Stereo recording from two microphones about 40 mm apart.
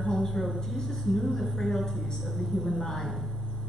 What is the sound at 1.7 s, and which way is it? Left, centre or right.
A woman's voice, centre.